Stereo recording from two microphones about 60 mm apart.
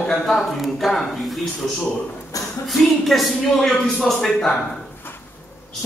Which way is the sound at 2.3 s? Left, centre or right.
Left.